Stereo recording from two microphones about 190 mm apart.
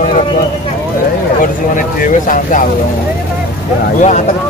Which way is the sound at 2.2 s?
45° left (ahead or behind).